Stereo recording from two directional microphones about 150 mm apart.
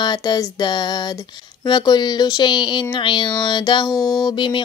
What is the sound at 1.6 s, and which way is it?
Speech, 30° left (ahead or behind).